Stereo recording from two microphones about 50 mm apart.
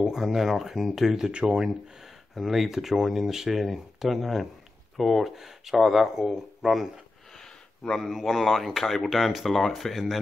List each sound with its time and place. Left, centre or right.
0.0 s speech: centre
1.3 s speech: centre
2.3 s speech: centre
8.0 s speech: centre